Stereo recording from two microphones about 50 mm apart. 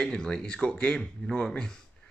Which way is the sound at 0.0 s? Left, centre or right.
Centre.